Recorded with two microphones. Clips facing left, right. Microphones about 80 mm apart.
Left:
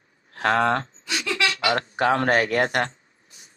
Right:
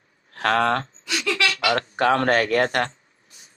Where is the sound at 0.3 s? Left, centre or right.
Centre.